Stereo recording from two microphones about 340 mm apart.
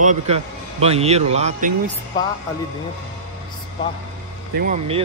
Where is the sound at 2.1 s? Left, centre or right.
Centre.